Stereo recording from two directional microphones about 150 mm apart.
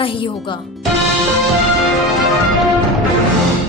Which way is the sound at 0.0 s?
35° left (ahead or behind).